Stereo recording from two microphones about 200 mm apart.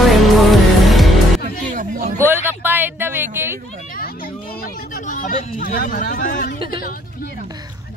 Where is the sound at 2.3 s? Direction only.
10° right (ahead or behind).